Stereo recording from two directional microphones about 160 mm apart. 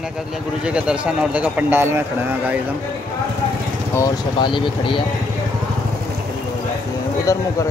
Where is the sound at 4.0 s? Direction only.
25° left (ahead or behind).